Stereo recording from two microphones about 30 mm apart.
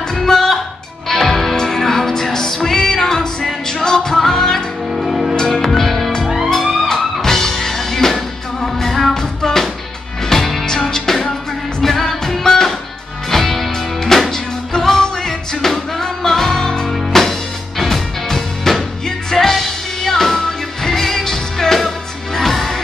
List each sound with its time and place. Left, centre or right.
0.1 s music: centre
4.9 s music: centre
5.5 s music: centre
5.9 s music: centre
6.2 s music: centre
7.2 s music: centre
11.8 s music: centre